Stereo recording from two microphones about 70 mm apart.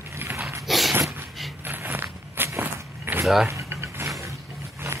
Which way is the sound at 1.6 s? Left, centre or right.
Right.